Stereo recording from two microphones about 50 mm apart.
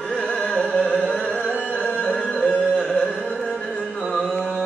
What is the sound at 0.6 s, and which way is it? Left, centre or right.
Music, left.